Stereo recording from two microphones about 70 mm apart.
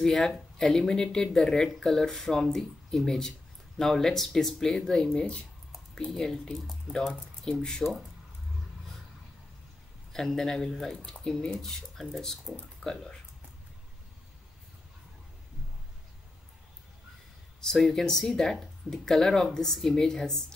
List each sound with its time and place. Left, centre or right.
0.0 s speech: centre
10.1 s speech: centre
17.6 s speech: centre